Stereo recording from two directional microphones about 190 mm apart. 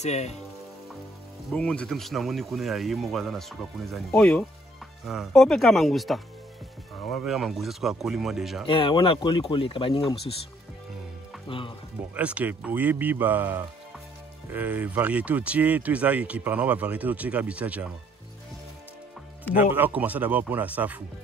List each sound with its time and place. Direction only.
0.0 s speech: 35° left (ahead or behind)
1.5 s speech: 5° left (ahead or behind)
8.6 s speech: 25° left (ahead or behind)
11.4 s speech: 25° left (ahead or behind)
12.1 s speech: 5° right (ahead or behind)
19.5 s speech: 10° right (ahead or behind)